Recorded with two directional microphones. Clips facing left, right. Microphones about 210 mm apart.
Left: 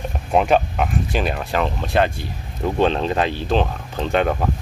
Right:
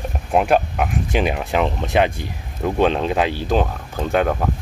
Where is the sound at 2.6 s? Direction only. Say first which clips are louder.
Right 1 dB; 5° right (ahead or behind).